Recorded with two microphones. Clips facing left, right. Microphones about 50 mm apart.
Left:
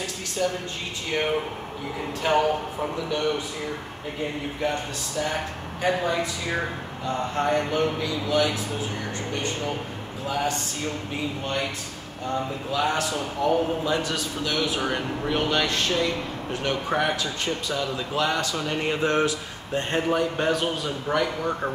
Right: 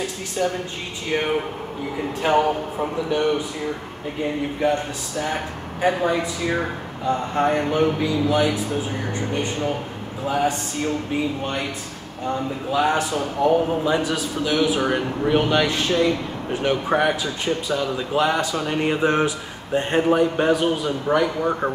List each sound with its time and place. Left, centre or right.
0.4 s speech: right
2.2 s speech: centre
4.6 s speech: centre
10.2 s speech: centre
12.7 s speech: centre